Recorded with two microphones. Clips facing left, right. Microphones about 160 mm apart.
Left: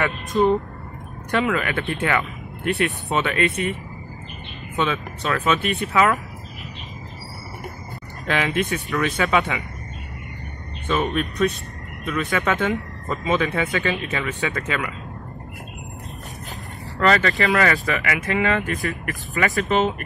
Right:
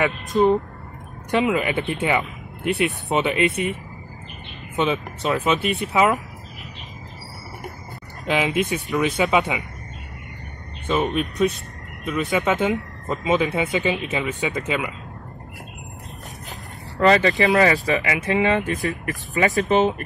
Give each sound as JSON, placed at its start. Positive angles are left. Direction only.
{"t": 0.0, "sound": "speech", "side_deg": -15}
{"t": 4.7, "sound": "speech", "side_deg": -20}
{"t": 8.3, "sound": "speech", "side_deg": -15}
{"t": 10.9, "sound": "speech", "side_deg": -20}
{"t": 17.0, "sound": "speech", "side_deg": -20}